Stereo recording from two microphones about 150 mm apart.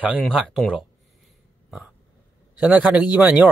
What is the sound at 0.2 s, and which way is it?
Speech, 5° right (ahead or behind).